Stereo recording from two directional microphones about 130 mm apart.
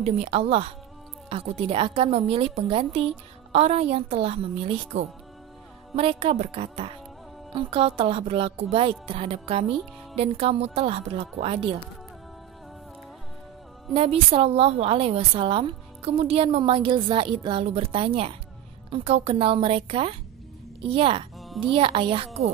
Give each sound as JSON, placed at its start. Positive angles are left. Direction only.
{"t": 0.0, "sound": "a woman's voice", "side_deg": -50}
{"t": 13.9, "sound": "a woman's voice", "side_deg": -45}